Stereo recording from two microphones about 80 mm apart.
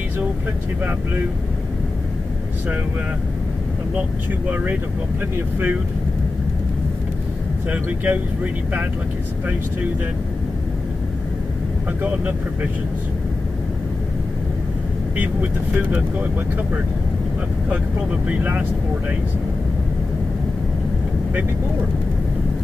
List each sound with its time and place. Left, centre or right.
7.7 s speech: right
12.0 s speech: right
15.1 s speech: right
18.2 s speech: centre